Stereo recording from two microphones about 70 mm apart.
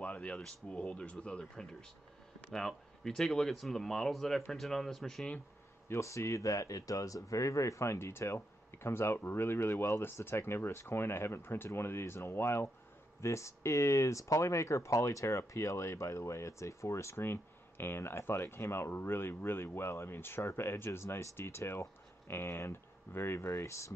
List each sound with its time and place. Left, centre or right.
0.0 s a sound: left
0.4 s speech: centre
5.9 s speech: left